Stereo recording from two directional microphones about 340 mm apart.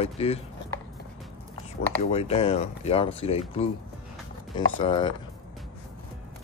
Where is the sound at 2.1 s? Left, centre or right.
Centre.